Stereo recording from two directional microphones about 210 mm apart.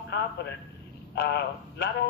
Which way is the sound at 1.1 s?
50° left (ahead or behind).